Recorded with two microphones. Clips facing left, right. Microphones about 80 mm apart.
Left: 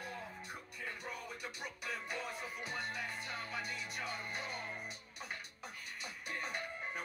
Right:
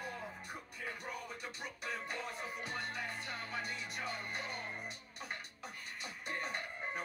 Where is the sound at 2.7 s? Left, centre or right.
Centre.